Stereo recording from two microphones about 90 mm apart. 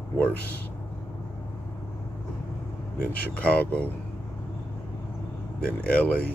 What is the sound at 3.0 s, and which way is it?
Speech, 15° left (ahead or behind).